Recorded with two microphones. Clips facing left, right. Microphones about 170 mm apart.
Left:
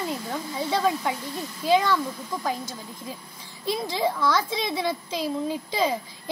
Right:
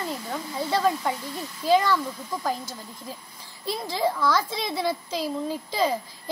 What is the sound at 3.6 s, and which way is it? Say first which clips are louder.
A woman's voice: left 1 dB; 5° right (ahead or behind).